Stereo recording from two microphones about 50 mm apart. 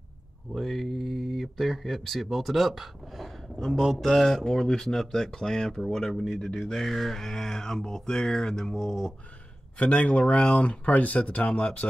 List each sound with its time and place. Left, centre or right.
0.6 s speech: centre
9.8 s speech: left